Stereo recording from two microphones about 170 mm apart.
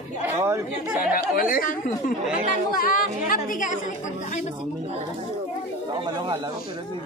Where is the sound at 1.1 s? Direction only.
60° left (ahead or behind).